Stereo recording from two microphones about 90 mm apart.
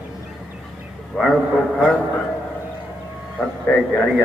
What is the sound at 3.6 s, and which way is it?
Speech, 5° left (ahead or behind).